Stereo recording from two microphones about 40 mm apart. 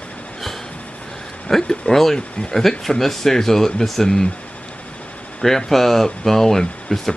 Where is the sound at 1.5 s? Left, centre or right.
Centre.